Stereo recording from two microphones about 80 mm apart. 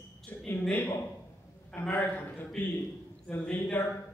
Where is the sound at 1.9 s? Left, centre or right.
Left.